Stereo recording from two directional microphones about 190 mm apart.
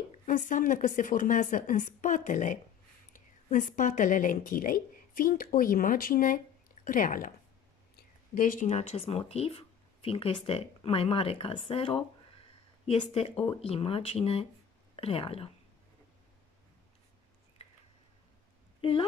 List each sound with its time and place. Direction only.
0.3 s a woman's voice: 45° left (ahead or behind)
17.6 s a sound: 35° left (ahead or behind)
18.8 s speech: 25° left (ahead or behind)